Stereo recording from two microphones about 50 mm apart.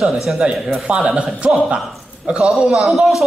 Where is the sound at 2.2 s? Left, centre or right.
Centre.